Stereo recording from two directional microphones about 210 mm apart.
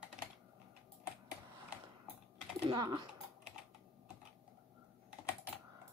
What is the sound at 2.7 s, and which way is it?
Typing, 20° right (ahead or behind).